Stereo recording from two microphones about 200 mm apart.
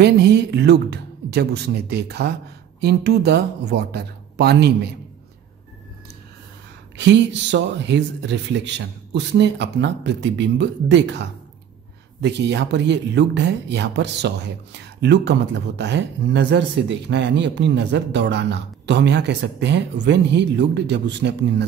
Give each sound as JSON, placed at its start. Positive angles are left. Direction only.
{"t": 0.0, "sound": "speech", "side_deg": -55}
{"t": 7.0, "sound": "speech", "side_deg": -60}